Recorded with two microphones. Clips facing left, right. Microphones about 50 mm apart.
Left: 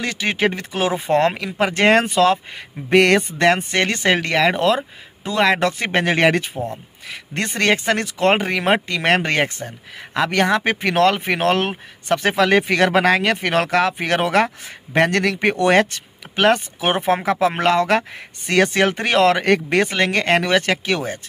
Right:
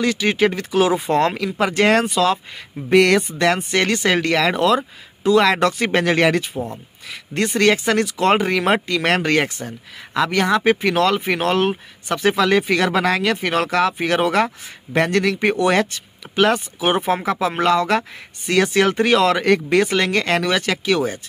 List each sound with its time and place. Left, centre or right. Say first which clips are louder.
0.0 s speech: right 3 dB; left